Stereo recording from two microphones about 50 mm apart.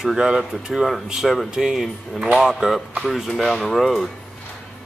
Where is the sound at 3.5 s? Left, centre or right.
Centre.